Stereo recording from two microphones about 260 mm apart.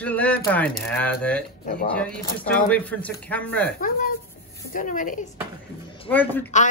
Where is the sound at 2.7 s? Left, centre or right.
Centre.